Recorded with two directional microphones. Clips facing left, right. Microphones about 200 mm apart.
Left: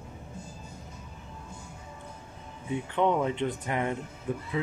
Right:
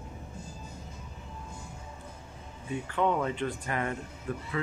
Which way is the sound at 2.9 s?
20° left (ahead or behind).